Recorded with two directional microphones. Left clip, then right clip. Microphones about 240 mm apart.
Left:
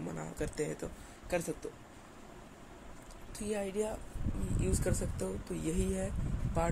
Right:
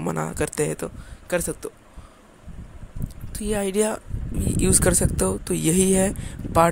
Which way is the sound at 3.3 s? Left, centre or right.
Right.